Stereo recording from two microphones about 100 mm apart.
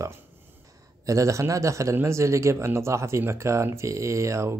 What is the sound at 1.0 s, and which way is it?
A man's voice, 35° right (ahead or behind).